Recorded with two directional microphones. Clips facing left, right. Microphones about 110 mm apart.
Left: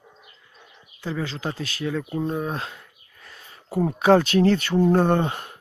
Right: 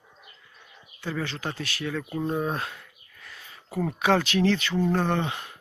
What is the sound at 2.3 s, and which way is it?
Speech, 5° right (ahead or behind).